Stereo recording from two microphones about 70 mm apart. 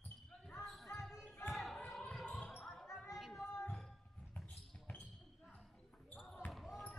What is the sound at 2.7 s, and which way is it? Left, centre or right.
Basketball bounce, centre.